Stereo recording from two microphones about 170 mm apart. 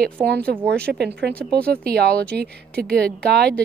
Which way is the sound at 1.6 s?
65° right (ahead or behind).